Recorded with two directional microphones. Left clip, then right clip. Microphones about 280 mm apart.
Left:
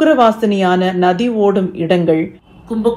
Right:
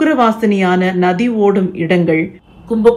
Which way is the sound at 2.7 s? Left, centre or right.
Centre.